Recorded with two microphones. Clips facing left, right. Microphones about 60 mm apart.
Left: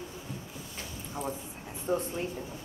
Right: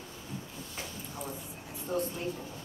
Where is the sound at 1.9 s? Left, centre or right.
Left.